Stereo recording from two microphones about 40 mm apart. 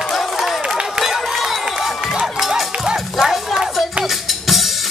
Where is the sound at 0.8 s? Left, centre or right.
Centre.